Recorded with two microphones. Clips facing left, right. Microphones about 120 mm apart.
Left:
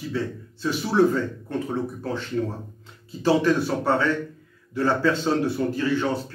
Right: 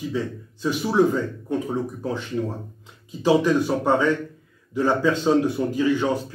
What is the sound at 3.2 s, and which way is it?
A man's voice, 15° right (ahead or behind).